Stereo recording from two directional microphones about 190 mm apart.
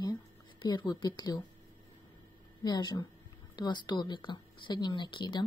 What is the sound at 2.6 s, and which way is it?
Speech, 20° left (ahead or behind).